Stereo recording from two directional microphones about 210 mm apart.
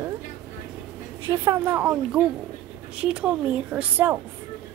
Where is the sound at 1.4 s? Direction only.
15° right (ahead or behind).